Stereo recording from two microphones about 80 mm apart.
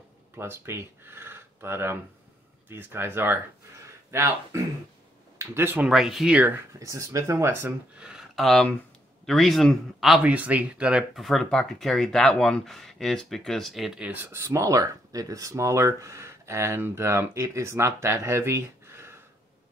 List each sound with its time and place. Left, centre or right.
0.4 s speech: right
5.9 s speech: centre
6.8 s speech: right
8.0 s speech: centre
10.2 s speech: centre
11.1 s speech: centre
14.0 s speech: right
14.5 s speech: right